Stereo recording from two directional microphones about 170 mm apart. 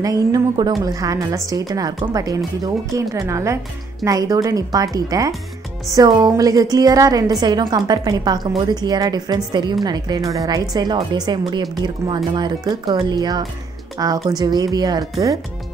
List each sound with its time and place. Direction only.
0.0 s a woman's voice: 20° right (ahead or behind)